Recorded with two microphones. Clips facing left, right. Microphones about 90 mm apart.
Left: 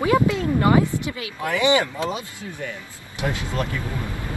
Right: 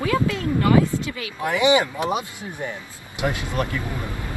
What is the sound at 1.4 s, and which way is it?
Speech, 20° right (ahead or behind).